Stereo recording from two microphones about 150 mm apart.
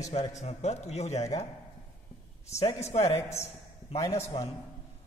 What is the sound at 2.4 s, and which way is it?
Speech, 45° left (ahead or behind).